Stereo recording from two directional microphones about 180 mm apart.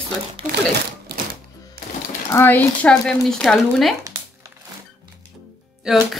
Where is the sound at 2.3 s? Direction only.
10° left (ahead or behind).